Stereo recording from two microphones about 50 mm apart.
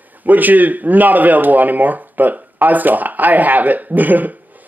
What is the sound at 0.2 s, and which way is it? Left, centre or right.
Speech, right.